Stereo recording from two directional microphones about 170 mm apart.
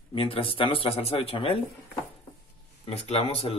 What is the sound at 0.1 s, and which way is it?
Speech, 30° left (ahead or behind).